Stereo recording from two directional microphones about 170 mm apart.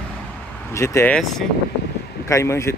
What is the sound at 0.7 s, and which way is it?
Speech, 15° left (ahead or behind).